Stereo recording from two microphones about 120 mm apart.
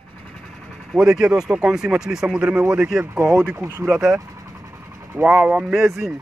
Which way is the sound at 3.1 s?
20° right (ahead or behind).